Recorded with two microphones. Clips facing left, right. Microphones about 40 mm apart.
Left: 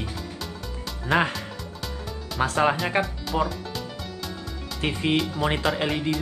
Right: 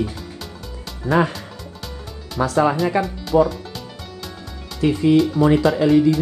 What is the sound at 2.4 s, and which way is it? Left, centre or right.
Speech, left.